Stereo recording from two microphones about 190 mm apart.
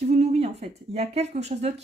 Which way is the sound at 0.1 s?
35° right (ahead or behind).